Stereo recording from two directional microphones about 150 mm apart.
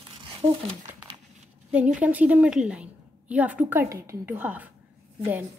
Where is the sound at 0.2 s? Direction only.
35° right (ahead or behind).